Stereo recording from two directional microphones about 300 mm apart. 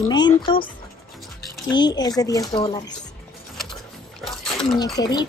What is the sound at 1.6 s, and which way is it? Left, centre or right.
Speech, centre.